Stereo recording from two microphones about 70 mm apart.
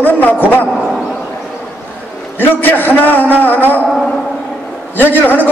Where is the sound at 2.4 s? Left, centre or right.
Left.